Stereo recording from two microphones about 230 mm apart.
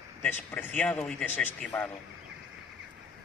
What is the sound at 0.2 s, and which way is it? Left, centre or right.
A man's voice, centre.